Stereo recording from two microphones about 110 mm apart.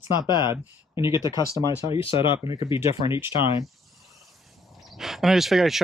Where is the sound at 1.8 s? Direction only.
55° left (ahead or behind).